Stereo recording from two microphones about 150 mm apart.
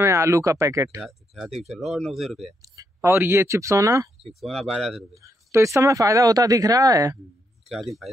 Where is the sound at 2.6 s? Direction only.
20° right (ahead or behind).